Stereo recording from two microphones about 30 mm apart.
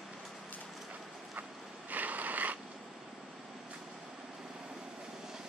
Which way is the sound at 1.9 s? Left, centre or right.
Right.